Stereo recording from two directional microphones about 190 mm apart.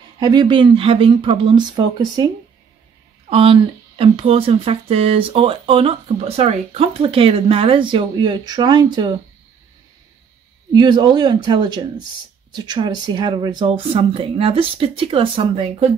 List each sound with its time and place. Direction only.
0.2 s speech: 20° right (ahead or behind)
3.3 s speech: 30° right (ahead or behind)
10.7 s speech: 25° right (ahead or behind)